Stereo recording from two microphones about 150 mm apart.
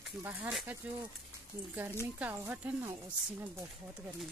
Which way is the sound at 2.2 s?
10° right (ahead or behind).